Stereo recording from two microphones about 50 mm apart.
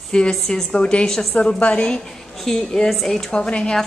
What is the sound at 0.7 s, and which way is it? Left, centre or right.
Music, left.